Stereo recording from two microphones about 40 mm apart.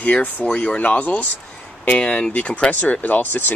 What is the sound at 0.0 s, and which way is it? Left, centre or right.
Speech, left.